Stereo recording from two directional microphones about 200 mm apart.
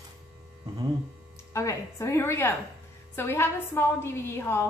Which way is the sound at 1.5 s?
15° left (ahead or behind).